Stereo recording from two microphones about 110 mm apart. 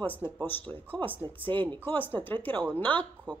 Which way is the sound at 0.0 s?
15° left (ahead or behind).